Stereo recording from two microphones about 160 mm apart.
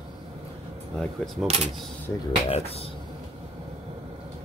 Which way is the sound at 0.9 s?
Centre (ahead or behind).